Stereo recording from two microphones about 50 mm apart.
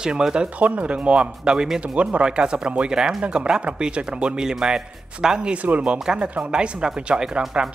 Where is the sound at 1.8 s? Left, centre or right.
Right.